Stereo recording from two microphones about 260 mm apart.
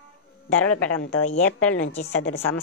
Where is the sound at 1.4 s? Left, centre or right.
Centre.